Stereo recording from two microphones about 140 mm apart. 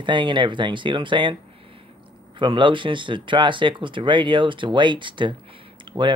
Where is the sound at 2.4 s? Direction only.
35° right (ahead or behind).